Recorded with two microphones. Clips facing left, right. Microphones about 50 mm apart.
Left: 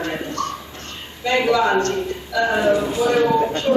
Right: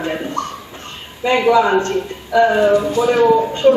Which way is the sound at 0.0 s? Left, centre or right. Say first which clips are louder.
Right 3 dB; centre.